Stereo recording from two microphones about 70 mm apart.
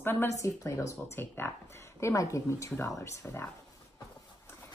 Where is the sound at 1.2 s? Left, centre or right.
Left.